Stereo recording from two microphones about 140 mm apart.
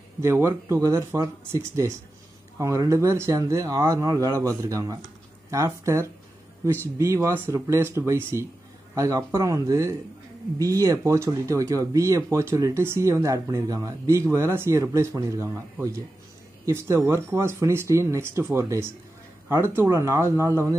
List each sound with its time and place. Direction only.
0.2 s speech: 20° right (ahead or behind)